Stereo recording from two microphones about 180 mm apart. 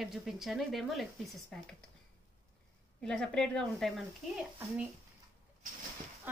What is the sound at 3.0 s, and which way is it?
A woman's voice, 5° left (ahead or behind).